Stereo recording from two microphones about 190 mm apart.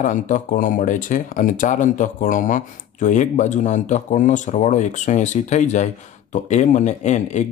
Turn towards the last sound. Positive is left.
turn(degrees=40)  # may be behind; listen again after turning